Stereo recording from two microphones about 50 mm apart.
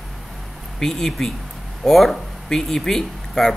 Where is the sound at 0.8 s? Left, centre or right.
Centre.